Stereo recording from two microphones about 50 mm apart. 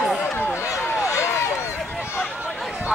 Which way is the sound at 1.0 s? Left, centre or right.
Left.